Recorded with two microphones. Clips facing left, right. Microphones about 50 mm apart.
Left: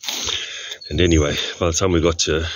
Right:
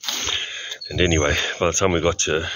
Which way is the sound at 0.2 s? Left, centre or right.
Right.